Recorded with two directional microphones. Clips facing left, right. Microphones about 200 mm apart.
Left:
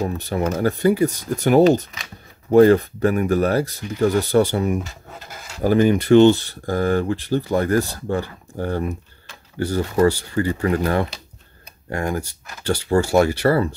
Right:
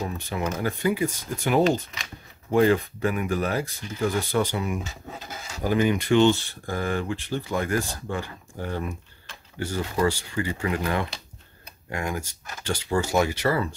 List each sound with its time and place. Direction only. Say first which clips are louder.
0.0 s speech: left 7 dB; 45° left (ahead or behind)